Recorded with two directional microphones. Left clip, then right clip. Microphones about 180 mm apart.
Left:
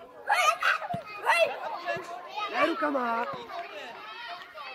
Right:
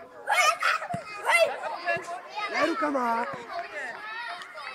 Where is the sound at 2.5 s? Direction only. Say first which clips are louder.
Right 1 dB; 40° right (ahead or behind).